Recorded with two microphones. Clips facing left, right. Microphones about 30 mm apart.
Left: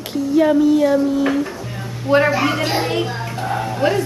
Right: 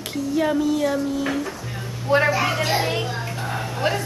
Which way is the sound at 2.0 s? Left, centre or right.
Centre.